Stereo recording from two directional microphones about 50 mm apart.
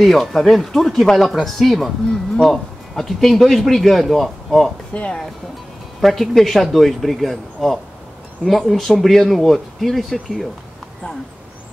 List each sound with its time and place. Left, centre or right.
0.0 s a man's voice: centre
4.9 s speech: left
5.9 s a man's voice: centre